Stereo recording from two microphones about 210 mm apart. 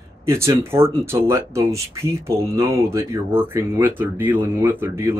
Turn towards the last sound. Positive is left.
turn(degrees=-10)  # may be behind; listen again after turning